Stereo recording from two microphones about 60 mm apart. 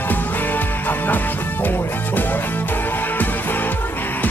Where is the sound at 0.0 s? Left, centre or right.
Left.